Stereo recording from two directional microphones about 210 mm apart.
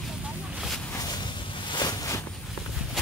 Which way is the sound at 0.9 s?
15° left (ahead or behind).